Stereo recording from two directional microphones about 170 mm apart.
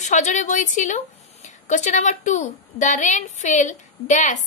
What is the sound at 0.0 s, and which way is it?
A woman's voice, 45° left (ahead or behind).